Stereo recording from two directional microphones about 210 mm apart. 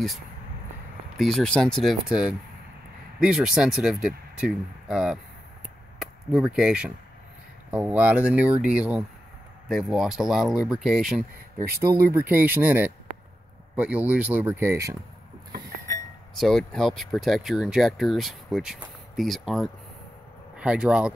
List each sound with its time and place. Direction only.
1.1 s speech: centre (ahead or behind)
11.8 s speech: 15° right (ahead or behind)
15.9 s chink: 40° right (ahead or behind)
16.3 s speech: centre (ahead or behind)